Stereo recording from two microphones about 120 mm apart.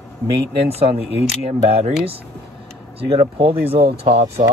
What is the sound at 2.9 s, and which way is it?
Speech, 50° right (ahead or behind).